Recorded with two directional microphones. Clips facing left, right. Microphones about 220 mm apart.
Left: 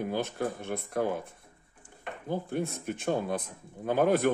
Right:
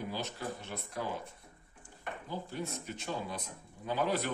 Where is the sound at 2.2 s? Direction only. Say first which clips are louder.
Left 9 dB; 55° left (ahead or behind).